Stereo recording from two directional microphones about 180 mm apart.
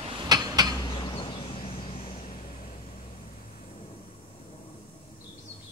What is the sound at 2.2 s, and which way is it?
Vehicle, 50° left (ahead or behind).